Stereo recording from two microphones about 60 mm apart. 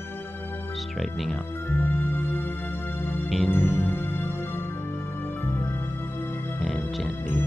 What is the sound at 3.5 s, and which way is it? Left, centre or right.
Music, left.